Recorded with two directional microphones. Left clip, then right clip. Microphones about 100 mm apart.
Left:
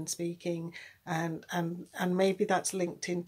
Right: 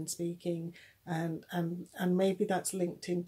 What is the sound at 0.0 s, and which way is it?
Speech, 20° right (ahead or behind).